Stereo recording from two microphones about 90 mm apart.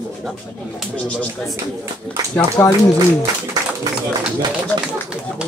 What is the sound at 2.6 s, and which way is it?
Speech, 30° left (ahead or behind).